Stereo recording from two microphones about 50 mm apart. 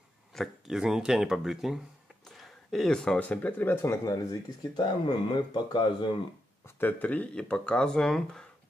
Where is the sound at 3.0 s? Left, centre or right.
Centre.